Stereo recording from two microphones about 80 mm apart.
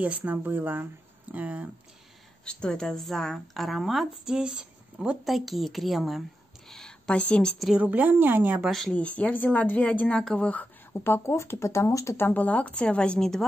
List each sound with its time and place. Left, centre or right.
0.0 s speech: centre
2.4 s a woman's voice: centre
6.7 s a woman's voice: centre
7.5 s a woman's voice: centre
7.8 s speech: right
8.6 s a woman's voice: centre
8.9 s speech: centre
10.9 s speech: left
12.2 s speech: left